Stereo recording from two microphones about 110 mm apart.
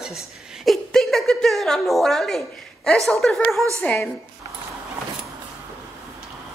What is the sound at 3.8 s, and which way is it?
Speech, 20° left (ahead or behind).